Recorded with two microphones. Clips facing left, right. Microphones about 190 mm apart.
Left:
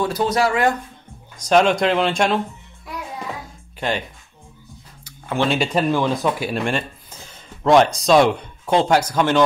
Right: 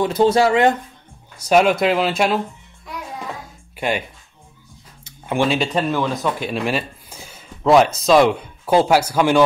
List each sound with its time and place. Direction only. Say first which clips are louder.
0.0 s speech: right 4 dB; 25° right (ahead or behind)
1.4 s speech: right 1 dB; 5° right (ahead or behind)
5.0 s a sound: right 2 dB; 15° right (ahead or behind)
5.5 s speech: left 1 dB; 10° left (ahead or behind)
6.5 s speech: right 1 dB; 5° right (ahead or behind)